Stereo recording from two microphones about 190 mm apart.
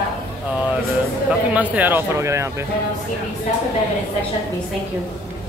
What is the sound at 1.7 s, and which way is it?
Speech, 10° right (ahead or behind).